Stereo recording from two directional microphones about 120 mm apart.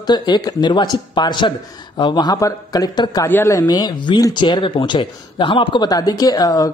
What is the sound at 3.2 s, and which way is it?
Speech, 20° left (ahead or behind).